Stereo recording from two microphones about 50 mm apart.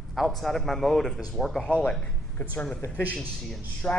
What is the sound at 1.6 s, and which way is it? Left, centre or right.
Speech, left.